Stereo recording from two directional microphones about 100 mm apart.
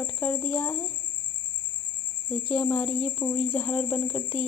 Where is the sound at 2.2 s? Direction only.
10° left (ahead or behind).